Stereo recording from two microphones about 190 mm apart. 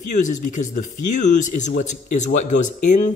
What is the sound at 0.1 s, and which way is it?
A man's voice, 40° left (ahead or behind).